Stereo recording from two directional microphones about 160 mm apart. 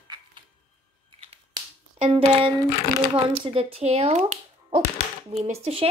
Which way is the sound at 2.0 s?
35° right (ahead or behind).